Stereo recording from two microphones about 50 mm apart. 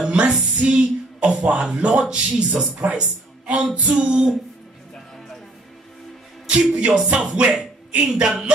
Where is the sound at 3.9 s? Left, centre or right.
Centre.